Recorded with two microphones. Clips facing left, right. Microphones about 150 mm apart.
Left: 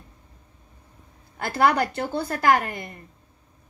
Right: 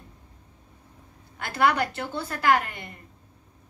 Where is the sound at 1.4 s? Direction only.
40° left (ahead or behind).